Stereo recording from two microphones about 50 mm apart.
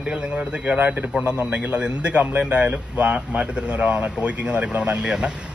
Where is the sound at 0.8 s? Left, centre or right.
Right.